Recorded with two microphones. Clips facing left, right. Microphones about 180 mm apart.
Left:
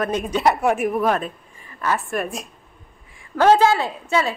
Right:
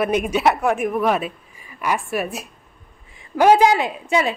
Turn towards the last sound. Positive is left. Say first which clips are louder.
# right 1 dB
turn(degrees=-15)  # may be behind; listen again after turning